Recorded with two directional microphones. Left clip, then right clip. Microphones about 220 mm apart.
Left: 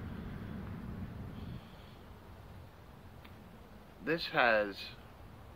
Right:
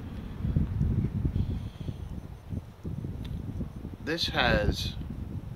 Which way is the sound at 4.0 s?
5° right (ahead or behind).